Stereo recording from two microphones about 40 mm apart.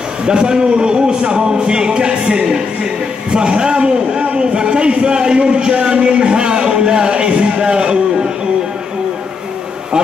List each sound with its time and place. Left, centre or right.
0.2 s a man's voice: right